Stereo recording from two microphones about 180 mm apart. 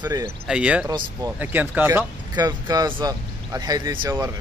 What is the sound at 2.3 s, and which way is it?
Speech, 20° right (ahead or behind).